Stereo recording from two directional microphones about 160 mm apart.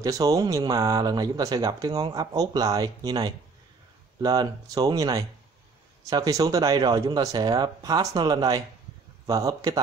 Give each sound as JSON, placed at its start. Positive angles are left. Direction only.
{"t": 0.0, "sound": "speech", "side_deg": -20}